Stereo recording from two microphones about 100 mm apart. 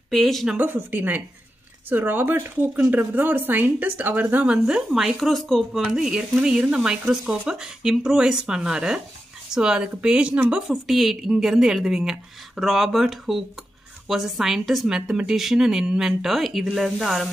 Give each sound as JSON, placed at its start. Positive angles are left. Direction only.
{"t": 0.1, "sound": "speech", "side_deg": 0}
{"t": 0.6, "sound": "speech", "side_deg": -20}
{"t": 10.7, "sound": "speech", "side_deg": 0}